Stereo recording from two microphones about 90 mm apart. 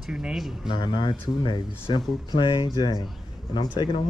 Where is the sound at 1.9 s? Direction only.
65° left (ahead or behind).